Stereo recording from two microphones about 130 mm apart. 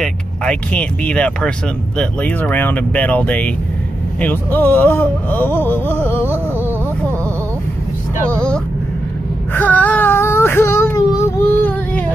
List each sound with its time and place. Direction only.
0.0 s speech: 10° left (ahead or behind)
8.3 s vehicle: 5° left (ahead or behind)
9.5 s child singing: 15° left (ahead or behind)